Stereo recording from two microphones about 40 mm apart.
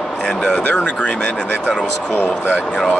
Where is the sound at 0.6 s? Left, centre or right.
Left.